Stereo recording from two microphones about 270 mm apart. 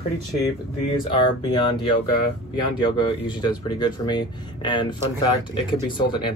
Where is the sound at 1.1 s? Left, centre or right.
Centre.